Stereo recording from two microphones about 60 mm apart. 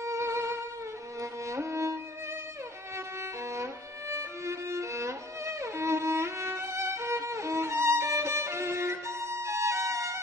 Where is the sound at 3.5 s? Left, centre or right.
Right.